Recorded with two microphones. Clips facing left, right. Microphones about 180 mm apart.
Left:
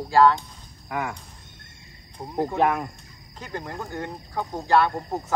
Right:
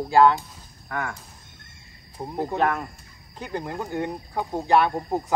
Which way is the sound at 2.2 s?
20° right (ahead or behind).